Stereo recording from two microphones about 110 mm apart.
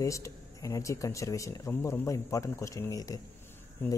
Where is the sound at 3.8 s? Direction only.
20° left (ahead or behind).